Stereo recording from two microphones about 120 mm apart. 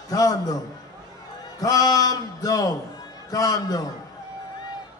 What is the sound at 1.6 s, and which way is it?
Speech, 30° left (ahead or behind).